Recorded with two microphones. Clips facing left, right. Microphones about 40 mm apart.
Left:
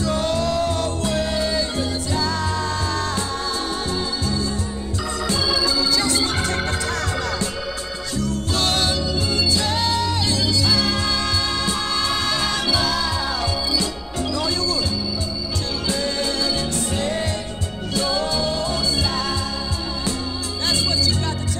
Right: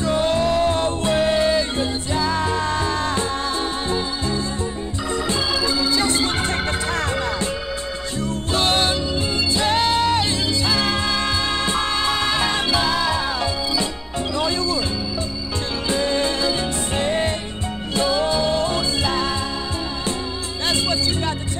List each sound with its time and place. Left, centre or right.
0.0 s music: right
5.2 s organ: right
8.2 s music: right
14.3 s music: right
15.9 s music: right
20.6 s music: right